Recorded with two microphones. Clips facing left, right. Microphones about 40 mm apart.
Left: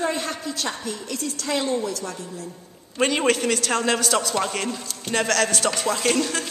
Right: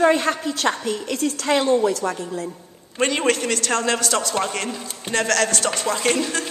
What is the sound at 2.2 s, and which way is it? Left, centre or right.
Speech, right.